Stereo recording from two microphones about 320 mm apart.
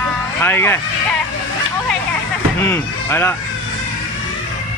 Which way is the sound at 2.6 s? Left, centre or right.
Centre.